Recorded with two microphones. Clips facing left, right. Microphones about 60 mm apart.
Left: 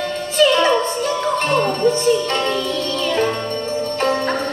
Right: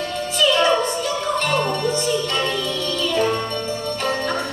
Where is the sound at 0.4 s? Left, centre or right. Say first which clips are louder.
Left 3 dB; left.